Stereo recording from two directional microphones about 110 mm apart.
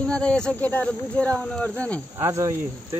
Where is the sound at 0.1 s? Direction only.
10° left (ahead or behind).